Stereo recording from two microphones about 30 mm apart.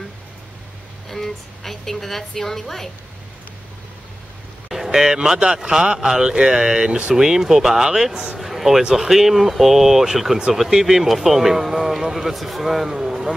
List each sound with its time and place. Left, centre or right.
1.0 s a woman's voice: centre
4.6 s a man's voice: centre; by 5.9 s right
5.9 s speech: centre
6.2 s speech: right
8.4 s a sound: centre
8.9 s speech: centre
12.9 s speech: centre